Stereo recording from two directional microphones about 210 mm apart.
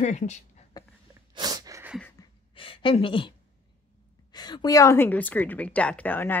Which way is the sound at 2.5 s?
25° left (ahead or behind).